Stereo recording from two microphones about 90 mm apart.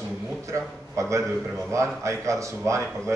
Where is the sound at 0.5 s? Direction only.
35° right (ahead or behind).